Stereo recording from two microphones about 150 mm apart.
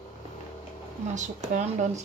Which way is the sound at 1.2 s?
50° right (ahead or behind).